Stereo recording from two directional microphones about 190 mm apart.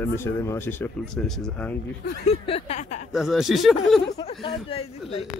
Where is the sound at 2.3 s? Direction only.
30° left (ahead or behind).